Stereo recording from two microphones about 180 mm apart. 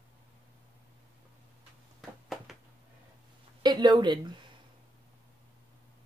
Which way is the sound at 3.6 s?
25° right (ahead or behind).